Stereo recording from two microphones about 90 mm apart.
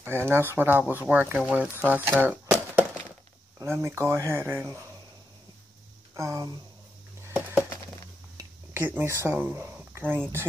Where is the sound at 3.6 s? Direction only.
30° right (ahead or behind).